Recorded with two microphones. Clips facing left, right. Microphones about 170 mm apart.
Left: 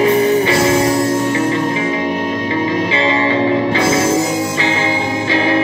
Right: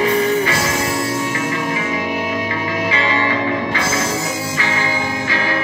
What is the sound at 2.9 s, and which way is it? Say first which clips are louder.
Music: left 4 dB; 25° left (ahead or behind).